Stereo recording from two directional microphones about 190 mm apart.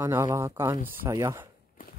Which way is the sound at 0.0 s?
15° right (ahead or behind).